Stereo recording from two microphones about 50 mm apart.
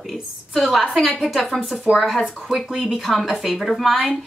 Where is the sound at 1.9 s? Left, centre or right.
Centre.